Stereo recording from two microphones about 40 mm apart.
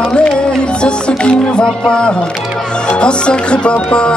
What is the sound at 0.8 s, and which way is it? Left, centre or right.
Music, left.